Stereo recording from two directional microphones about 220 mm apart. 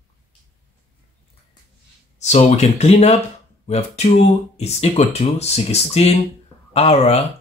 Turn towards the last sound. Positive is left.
turn(degrees=30)  # may be behind; listen again after turning